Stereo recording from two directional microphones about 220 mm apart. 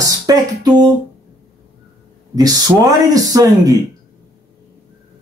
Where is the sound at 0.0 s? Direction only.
15° right (ahead or behind).